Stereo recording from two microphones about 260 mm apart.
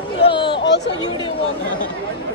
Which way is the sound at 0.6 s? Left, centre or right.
Left.